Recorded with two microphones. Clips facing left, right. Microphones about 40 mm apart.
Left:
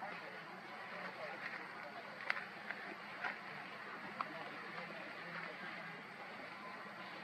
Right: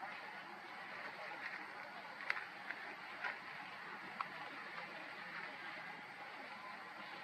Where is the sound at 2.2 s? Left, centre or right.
Centre.